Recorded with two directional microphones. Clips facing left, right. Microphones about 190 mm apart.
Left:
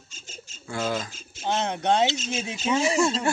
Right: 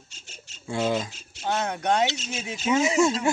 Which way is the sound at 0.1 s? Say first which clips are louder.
Left 8 dB; 65° right (ahead or behind).